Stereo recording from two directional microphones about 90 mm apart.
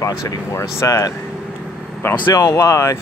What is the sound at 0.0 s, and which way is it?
Speech, 35° left (ahead or behind).